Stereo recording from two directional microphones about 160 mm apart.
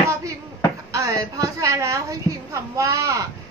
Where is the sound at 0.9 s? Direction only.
20° right (ahead or behind).